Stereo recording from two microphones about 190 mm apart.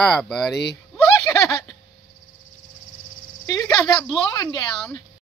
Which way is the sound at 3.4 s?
15° left (ahead or behind).